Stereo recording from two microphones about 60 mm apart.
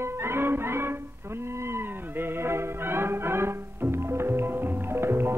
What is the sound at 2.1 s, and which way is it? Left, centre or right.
Music, right.